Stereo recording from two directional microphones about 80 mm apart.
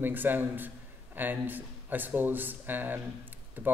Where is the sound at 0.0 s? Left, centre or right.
Right.